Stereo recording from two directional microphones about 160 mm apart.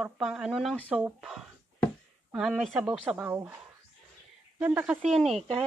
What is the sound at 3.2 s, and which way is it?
Speech, 15° right (ahead or behind).